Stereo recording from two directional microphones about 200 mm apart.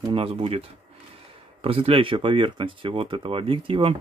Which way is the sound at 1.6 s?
30° right (ahead or behind).